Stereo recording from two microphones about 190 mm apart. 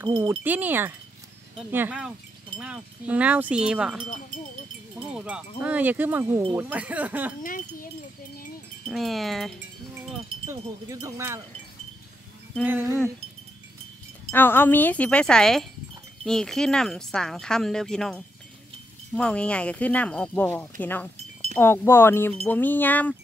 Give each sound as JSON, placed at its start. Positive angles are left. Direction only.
{"t": 0.1, "sound": "wind chime", "side_deg": -25}
{"t": 0.4, "sound": "wind chime", "side_deg": -10}
{"t": 5.1, "sound": "speech", "side_deg": -5}
{"t": 5.6, "sound": "wind chime", "side_deg": -10}
{"t": 7.4, "sound": "speech", "side_deg": 45}
{"t": 8.8, "sound": "speech", "side_deg": 0}
{"t": 10.5, "sound": "wind chime", "side_deg": -15}
{"t": 12.6, "sound": "wind chime", "side_deg": -10}
{"t": 14.3, "sound": "speech", "side_deg": 10}